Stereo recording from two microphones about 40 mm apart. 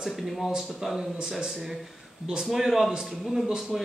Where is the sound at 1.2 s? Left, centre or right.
Centre.